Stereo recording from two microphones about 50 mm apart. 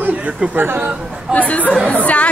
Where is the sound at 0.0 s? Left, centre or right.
Right.